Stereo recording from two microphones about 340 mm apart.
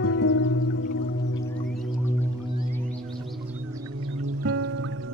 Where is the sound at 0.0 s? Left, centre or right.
Left.